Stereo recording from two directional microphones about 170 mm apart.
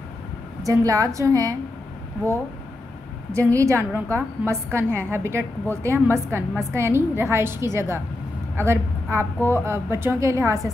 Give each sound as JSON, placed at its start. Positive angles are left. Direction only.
{"t": 0.7, "sound": "a woman's voice", "side_deg": -20}
{"t": 3.3, "sound": "a woman's voice", "side_deg": -15}